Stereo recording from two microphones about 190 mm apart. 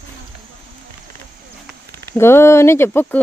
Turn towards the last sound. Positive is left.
turn(degrees=10)  # may be behind; listen again after turning